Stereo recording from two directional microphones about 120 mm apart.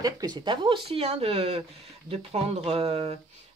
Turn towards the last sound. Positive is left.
turn(degrees=-60)  # may be behind; listen again after turning